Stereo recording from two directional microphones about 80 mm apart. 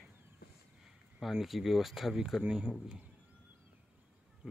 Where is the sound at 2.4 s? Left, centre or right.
Centre.